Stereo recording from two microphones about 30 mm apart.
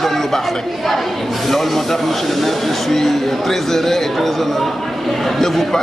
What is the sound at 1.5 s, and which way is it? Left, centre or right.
Speech, centre.